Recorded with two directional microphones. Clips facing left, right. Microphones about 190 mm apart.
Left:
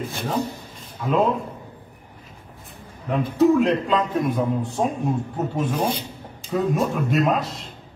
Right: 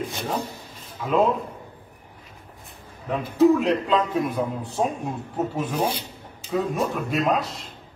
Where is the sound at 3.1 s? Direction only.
Centre (ahead or behind).